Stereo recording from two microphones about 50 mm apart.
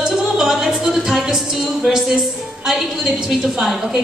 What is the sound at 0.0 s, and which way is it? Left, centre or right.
Music, centre.